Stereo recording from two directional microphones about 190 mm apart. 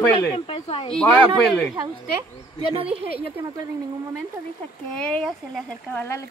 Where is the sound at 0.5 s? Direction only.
30° left (ahead or behind).